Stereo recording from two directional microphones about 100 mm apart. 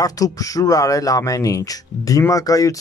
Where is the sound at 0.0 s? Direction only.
35° left (ahead or behind).